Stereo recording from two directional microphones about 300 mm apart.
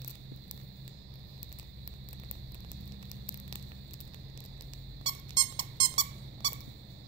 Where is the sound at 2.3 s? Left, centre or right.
Right.